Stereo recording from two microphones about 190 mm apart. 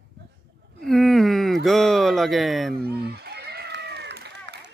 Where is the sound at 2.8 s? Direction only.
55° right (ahead or behind).